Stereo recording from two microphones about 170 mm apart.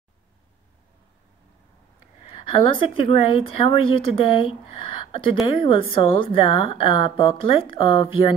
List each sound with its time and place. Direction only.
2.7 s speech: 30° left (ahead or behind)